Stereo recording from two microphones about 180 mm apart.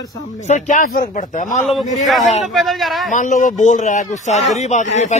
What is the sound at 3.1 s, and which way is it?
A man's voice, 45° left (ahead or behind).